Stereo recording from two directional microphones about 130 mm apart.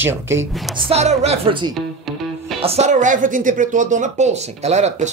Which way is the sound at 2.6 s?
55° right (ahead or behind).